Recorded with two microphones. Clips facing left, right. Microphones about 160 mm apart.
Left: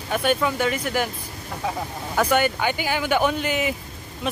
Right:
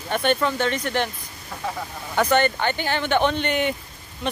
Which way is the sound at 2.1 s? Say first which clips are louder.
Right 1 dB; 10° left (ahead or behind).